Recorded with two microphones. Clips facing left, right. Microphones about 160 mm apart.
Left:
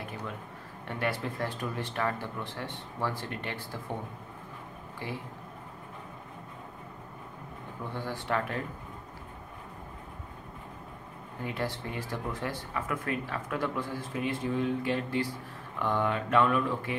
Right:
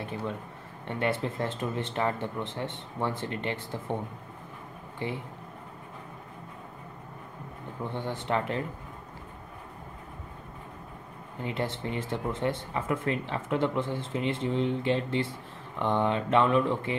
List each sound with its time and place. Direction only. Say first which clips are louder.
0.8 s speech: right 3 dB; 25° right (ahead or behind)
4.9 s speech: right 4 dB; 25° right (ahead or behind)
7.9 s speech: right 2 dB; 25° right (ahead or behind)
11.4 s speech: right 2 dB; 25° right (ahead or behind)